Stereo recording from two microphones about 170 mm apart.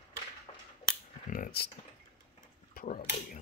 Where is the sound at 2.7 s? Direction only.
60° left (ahead or behind).